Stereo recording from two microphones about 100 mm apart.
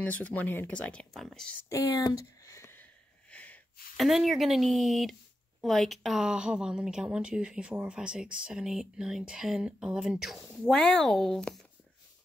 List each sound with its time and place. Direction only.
0.0 s speech: 15° left (ahead or behind)
1.7 s a sound: 35° left (ahead or behind); by 3.6 s 15° left (ahead or behind)
3.9 s a woman's voice: centre (ahead or behind)